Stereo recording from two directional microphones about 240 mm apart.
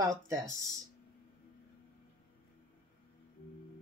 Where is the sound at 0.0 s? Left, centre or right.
Centre.